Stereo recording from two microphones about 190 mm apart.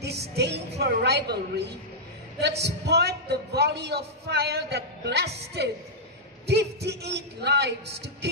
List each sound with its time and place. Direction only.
0.0 s music: 60° right (ahead or behind)
0.7 s a man's voice: 60° right (ahead or behind)